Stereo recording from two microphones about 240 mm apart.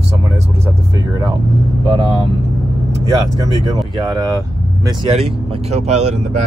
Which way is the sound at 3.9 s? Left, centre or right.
Centre.